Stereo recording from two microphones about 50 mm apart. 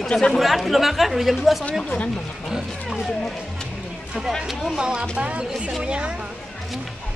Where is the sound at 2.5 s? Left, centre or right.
Centre.